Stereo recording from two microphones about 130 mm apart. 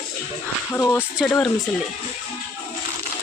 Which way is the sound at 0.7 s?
20° left (ahead or behind).